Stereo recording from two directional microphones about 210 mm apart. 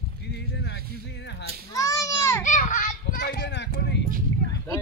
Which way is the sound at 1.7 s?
15° left (ahead or behind).